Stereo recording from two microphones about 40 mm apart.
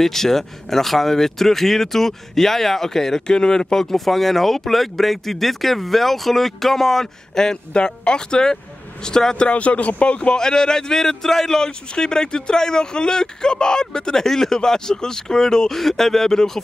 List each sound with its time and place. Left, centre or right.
0.0 s a man's voice: centre
7.7 s a man's voice: left
9.5 s speech: left
10.3 s a man's voice: centre